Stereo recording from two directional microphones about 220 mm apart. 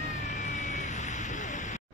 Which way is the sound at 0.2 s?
35° left (ahead or behind).